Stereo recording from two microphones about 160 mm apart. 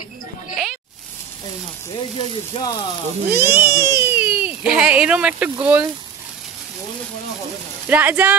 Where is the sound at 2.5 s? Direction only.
35° left (ahead or behind).